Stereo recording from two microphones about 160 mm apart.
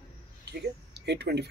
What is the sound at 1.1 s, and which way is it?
Speech, 90° right.